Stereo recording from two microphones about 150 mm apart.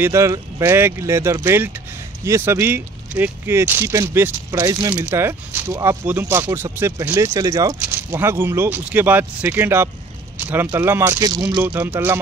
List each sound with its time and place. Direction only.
0.0 s speech: 20° right (ahead or behind)
11.6 s speech: 10° right (ahead or behind)